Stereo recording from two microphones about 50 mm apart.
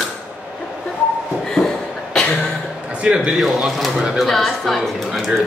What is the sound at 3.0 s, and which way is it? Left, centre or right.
Speech, right.